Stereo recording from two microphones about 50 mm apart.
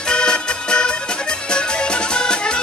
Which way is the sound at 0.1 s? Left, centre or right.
Centre.